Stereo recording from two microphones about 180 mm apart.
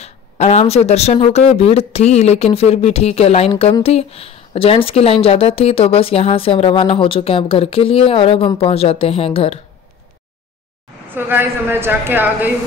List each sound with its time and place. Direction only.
0.0 s speech: 35° left (ahead or behind)
11.1 s a woman's voice: 10° right (ahead or behind)